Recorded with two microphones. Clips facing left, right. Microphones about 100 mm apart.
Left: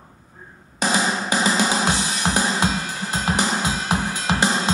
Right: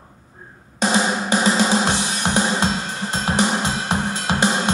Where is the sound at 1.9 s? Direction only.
25° right (ahead or behind).